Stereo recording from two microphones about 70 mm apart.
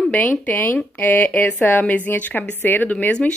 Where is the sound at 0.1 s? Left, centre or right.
Left.